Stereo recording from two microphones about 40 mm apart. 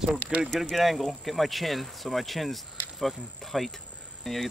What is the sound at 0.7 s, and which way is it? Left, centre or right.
Speech, centre.